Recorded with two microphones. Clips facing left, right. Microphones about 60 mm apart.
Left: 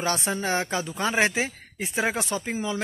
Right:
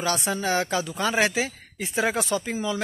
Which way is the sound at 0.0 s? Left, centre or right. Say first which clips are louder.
Right 1 dB; left.